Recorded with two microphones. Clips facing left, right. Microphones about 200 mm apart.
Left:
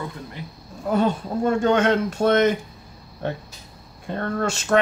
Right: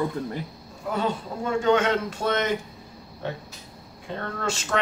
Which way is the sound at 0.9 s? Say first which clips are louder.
Left 6 dB; 50° left (ahead or behind).